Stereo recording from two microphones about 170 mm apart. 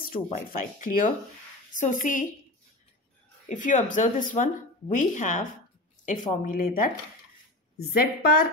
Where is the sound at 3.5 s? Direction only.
50° left (ahead or behind).